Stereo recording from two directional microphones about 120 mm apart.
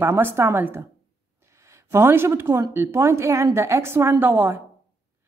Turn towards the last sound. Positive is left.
turn(degrees=-20)  # may be behind; listen again after turning